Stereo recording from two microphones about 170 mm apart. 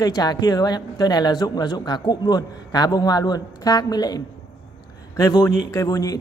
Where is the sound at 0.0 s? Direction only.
25° left (ahead or behind).